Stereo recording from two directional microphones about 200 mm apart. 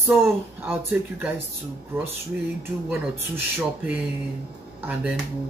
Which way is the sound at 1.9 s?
10° right (ahead or behind).